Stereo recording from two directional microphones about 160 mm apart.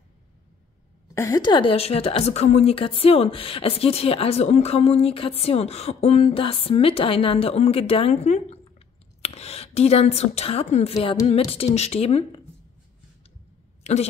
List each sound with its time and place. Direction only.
1.0 s a woman's voice: 20° left (ahead or behind); by 12.3 s 40° left (ahead or behind)